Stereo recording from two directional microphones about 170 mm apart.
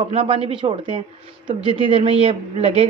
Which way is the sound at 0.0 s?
35° right (ahead or behind).